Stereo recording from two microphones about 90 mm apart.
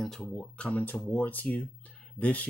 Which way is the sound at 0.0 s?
5° left (ahead or behind).